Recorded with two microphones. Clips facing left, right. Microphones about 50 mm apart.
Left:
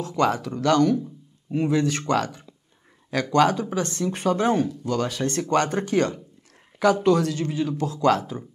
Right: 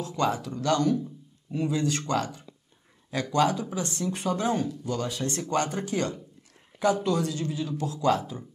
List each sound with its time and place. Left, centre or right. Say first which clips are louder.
0.2 s speech: left 5 dB; left
4.8 s speech: left 5 dB; left